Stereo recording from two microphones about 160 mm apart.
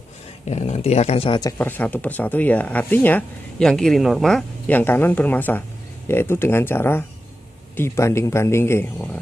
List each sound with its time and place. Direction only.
0.5 s speech: 45° left (ahead or behind)
1.4 s speech: 10° left (ahead or behind)